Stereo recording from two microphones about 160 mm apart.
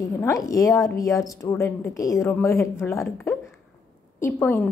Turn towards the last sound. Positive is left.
turn(degrees=15)  # may be behind; listen again after turning